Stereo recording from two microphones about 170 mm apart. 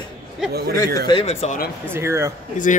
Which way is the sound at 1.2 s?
40° left (ahead or behind).